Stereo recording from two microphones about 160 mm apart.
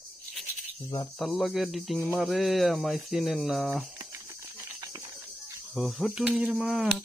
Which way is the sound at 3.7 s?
15° right (ahead or behind).